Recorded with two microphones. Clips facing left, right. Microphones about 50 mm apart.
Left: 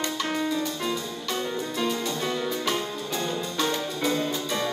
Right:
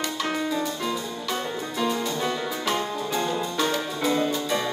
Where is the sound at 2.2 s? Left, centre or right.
Centre.